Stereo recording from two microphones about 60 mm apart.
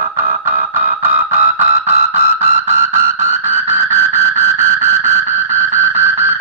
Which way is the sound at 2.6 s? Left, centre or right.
Right.